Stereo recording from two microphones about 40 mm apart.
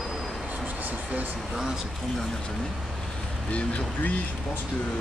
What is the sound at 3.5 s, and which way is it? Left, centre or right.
Speech, left.